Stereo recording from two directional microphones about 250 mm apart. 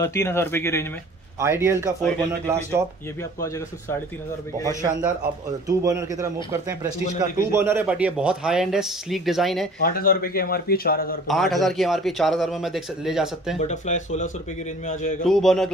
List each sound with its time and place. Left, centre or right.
0.0 s speech: centre
1.4 s speech: centre
3.3 s speech: centre
4.6 s a man's voice: centre
9.8 s a man's voice: left
11.2 s a man's voice: centre
13.6 s a man's voice: left
15.2 s a man's voice: centre